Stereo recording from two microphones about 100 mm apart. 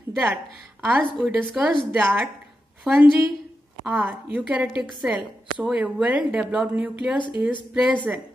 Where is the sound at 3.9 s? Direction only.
15° right (ahead or behind).